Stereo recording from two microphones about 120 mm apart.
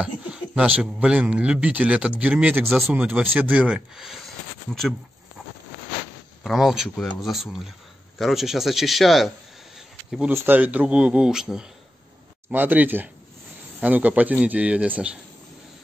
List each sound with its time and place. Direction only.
0.0 s speech: 10° right (ahead or behind)
2.6 s speech: centre (ahead or behind)
2.9 s speech: 10° right (ahead or behind)
6.4 s speech: centre (ahead or behind)
9.8 s a sound: 5° right (ahead or behind)
10.3 s speech: 15° right (ahead or behind)